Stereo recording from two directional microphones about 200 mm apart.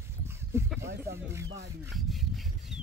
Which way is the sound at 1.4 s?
60° right (ahead or behind).